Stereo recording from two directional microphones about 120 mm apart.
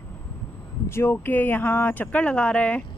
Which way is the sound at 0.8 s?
20° left (ahead or behind).